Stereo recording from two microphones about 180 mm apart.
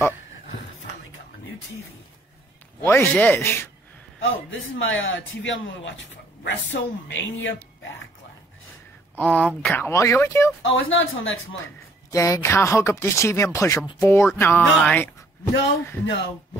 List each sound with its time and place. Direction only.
2.8 s speech: 10° left (ahead or behind)
4.2 s speech: 90° left
9.2 s speech: 10° left (ahead or behind)
10.6 s speech: 90° left
11.6 s speech: 15° left (ahead or behind)